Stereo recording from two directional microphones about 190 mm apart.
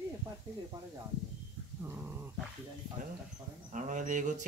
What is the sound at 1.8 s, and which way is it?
Dog, 10° right (ahead or behind).